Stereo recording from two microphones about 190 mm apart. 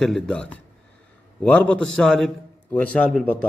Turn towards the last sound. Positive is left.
turn(degrees=0)  # may be behind; listen again after turning